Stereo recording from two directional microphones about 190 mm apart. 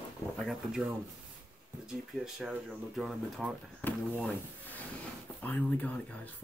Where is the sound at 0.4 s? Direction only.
Centre (ahead or behind).